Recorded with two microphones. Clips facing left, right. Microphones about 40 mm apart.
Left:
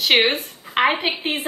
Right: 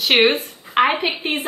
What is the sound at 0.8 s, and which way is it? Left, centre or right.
Speech, centre.